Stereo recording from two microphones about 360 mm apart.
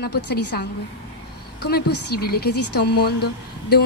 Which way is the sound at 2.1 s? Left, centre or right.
Left.